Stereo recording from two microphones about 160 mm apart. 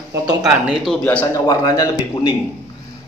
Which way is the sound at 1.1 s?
10° left (ahead or behind).